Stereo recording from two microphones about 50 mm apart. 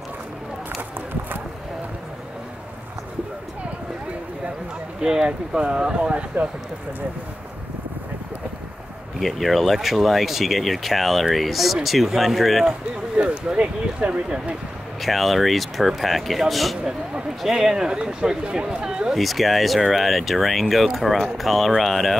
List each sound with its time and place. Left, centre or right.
5.0 s speech: centre
9.2 s speech: centre
13.2 s speech: centre
15.0 s speech: centre
17.4 s speech: centre
19.1 s speech: centre